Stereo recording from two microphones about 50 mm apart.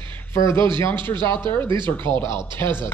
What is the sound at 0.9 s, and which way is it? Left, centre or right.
Speech, left.